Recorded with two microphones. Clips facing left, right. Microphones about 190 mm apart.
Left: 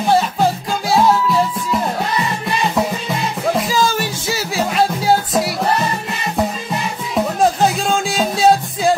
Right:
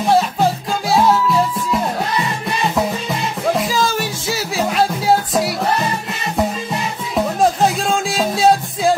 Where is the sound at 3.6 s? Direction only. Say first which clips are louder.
Left 1 dB; centre (ahead or behind).